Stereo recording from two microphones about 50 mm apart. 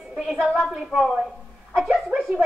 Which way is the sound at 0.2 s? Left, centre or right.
Centre.